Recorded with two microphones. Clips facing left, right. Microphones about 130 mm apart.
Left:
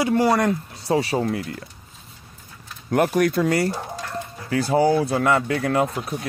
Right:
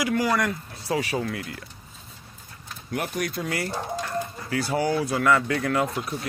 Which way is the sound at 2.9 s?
50° left (ahead or behind).